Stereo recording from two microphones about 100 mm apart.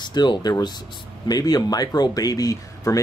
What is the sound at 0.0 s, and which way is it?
Speech, 45° left (ahead or behind).